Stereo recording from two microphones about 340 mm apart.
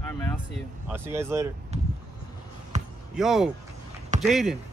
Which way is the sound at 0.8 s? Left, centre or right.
Centre.